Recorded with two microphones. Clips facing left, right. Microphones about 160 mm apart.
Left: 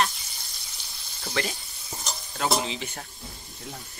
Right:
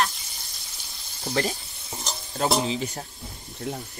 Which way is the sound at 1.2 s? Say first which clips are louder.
Right 4 dB; 35° right (ahead or behind).